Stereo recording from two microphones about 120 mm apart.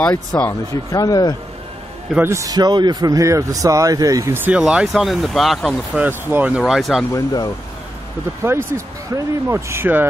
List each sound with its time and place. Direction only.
0.5 s speech: 30° left (ahead or behind)
2.1 s speech: 25° right (ahead or behind)
4.5 s speech: 5° right (ahead or behind)
5.9 s speech: 15° right (ahead or behind)
6.7 s speech: centre (ahead or behind)
7.1 s speech: 30° left (ahead or behind)
8.4 s speech: 25° right (ahead or behind)